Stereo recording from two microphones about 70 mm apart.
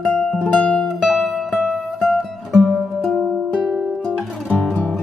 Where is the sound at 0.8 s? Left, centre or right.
Centre.